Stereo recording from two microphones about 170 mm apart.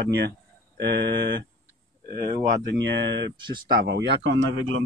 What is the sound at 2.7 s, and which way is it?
Speech, 90° right.